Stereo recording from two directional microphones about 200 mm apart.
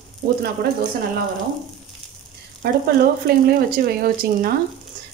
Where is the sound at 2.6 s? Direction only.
50° right (ahead or behind).